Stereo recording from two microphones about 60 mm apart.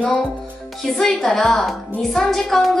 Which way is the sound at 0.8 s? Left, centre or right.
Centre.